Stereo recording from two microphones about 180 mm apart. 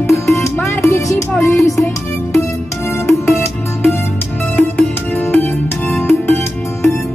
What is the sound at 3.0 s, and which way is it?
Music, 15° left (ahead or behind).